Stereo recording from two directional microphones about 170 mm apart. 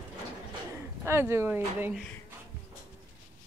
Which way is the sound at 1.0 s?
15° right (ahead or behind).